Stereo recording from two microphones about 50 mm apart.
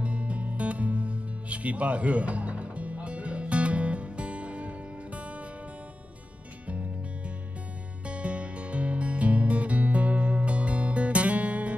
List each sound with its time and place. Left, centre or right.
0.0 s music: right
6.7 s music: right